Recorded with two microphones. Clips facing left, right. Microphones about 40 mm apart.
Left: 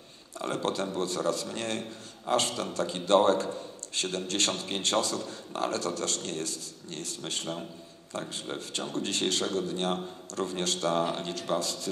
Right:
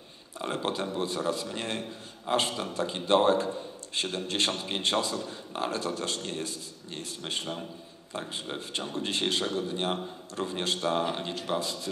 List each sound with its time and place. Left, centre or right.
0.4 s a man's voice: centre